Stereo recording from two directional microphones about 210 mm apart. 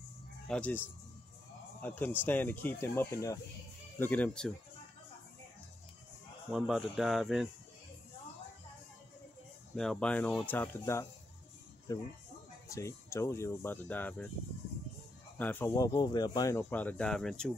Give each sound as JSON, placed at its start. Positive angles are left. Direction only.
{"t": 0.5, "sound": "speech", "side_deg": 5}
{"t": 6.5, "sound": "speech", "side_deg": 0}
{"t": 9.8, "sound": "speech", "side_deg": 5}
{"t": 15.3, "sound": "speech", "side_deg": 10}